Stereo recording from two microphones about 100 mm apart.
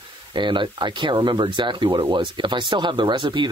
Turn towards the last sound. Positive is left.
turn(degrees=-50)  # may be behind; listen again after turning